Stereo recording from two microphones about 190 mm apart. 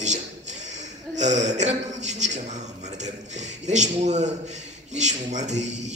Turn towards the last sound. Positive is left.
turn(degrees=-35)  # may be behind; listen again after turning